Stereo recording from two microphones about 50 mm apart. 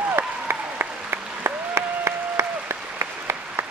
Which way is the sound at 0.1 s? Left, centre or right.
Right.